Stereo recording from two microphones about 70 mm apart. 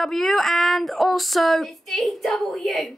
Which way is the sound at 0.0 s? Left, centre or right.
Centre.